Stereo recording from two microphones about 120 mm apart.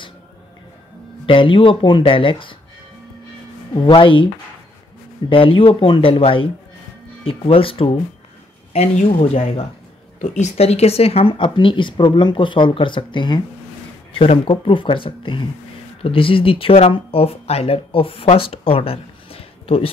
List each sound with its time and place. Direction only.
1.2 s speech: 45° left (ahead or behind)
3.7 s speech: 45° left (ahead or behind)
5.3 s speech: 50° left (ahead or behind)
8.7 s speech: 60° left (ahead or behind)
10.3 s speech: 70° left (ahead or behind); by 19.9 s 50° left (ahead or behind)